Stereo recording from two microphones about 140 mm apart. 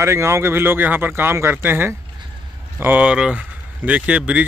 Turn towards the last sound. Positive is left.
turn(degrees=-10)  # may be behind; listen again after turning